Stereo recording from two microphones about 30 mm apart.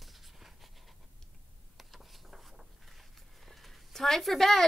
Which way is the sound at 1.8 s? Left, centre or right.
Centre.